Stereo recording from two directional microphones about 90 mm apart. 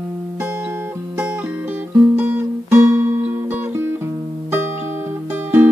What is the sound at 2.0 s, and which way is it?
Music, 20° right (ahead or behind).